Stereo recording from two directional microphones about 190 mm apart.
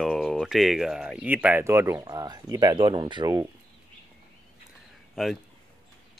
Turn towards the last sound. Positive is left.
turn(degrees=0)  # may be behind; listen again after turning